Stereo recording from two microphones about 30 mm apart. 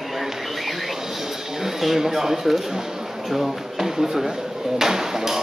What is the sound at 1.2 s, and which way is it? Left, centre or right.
Speech, centre.